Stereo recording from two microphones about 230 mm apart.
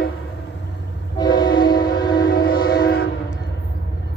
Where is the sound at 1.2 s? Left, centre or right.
Centre.